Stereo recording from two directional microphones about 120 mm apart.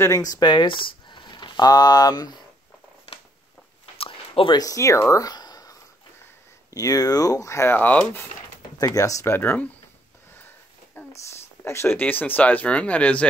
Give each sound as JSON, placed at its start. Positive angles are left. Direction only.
{"t": 0.0, "sound": "speech", "side_deg": 30}
{"t": 4.0, "sound": "a sound", "side_deg": 50}
{"t": 4.6, "sound": "speech", "side_deg": 30}
{"t": 8.7, "sound": "speech", "side_deg": 30}
{"t": 11.1, "sound": "speech", "side_deg": 20}